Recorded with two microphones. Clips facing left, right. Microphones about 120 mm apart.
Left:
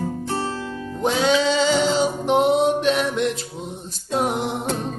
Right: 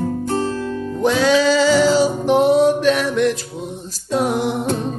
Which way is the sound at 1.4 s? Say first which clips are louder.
Right 5 dB; 25° left (ahead or behind).